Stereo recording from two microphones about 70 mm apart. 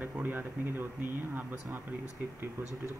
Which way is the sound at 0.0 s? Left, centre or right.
Right.